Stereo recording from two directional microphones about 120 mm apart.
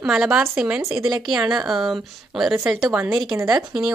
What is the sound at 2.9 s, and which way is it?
Speech, 15° right (ahead or behind).